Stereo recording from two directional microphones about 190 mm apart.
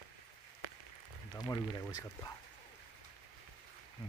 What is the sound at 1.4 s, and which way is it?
Speech, 20° left (ahead or behind).